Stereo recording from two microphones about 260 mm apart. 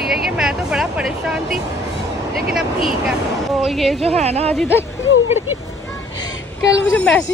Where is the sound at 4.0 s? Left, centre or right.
Right.